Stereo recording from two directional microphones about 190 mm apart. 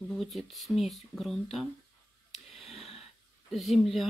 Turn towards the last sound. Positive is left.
turn(degrees=0)  # may be behind; listen again after turning